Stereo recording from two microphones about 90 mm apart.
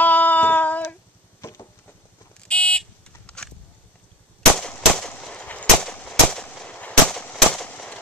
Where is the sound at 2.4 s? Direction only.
10° left (ahead or behind).